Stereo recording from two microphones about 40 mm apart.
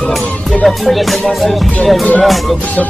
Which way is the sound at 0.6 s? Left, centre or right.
Centre.